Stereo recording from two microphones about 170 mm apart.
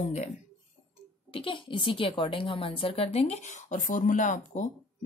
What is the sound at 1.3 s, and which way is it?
Speech, 30° left (ahead or behind).